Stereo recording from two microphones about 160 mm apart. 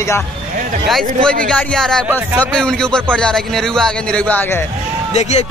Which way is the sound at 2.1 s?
15° right (ahead or behind).